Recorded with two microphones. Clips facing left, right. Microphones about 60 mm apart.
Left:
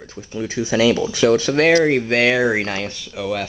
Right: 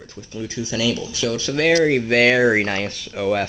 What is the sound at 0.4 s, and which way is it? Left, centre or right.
Speech, left.